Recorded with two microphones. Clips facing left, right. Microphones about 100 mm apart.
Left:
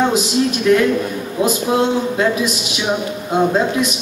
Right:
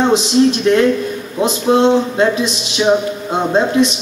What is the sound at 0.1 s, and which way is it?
Speech, 25° right (ahead or behind).